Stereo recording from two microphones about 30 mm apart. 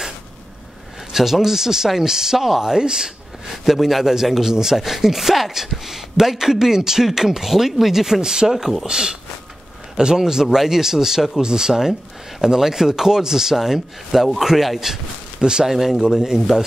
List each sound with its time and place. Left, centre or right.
1.1 s speech: centre
2.6 s a man's voice: right
3.6 s speech: centre
8.2 s a man's voice: right
8.5 s speech: centre
8.8 s a man's voice: right
11.4 s a man's voice: right